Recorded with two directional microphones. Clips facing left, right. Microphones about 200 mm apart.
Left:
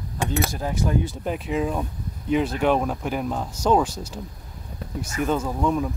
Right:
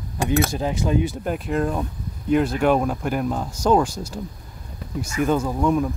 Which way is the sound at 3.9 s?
10° right (ahead or behind).